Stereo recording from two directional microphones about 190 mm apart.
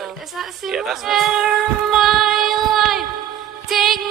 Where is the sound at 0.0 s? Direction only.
Centre (ahead or behind).